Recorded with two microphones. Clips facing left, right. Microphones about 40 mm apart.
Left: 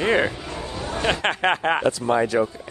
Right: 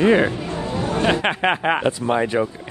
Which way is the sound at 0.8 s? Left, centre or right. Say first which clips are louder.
Right 6 dB; right.